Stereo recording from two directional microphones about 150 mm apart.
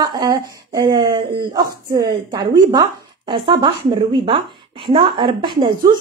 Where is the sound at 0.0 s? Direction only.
25° right (ahead or behind).